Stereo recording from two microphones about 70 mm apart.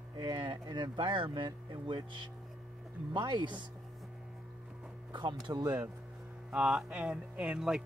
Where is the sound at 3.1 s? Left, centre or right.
Right.